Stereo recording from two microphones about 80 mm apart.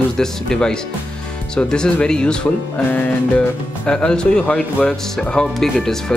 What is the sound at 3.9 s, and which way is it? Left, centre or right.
Speech, centre.